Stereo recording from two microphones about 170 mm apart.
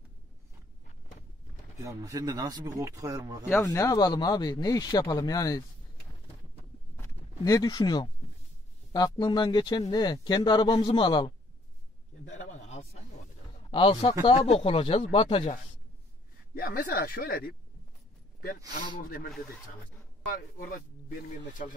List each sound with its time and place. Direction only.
1.8 s speech: 20° right (ahead or behind)
3.4 s speech: 10° left (ahead or behind)
7.4 s speech: 20° left (ahead or behind)
12.3 s a sound: 45° left (ahead or behind)
13.7 s speech: 30° left (ahead or behind)
16.5 s speech: 60° left (ahead or behind)
18.9 s speech: 55° left (ahead or behind)
20.2 s speech: 60° left (ahead or behind)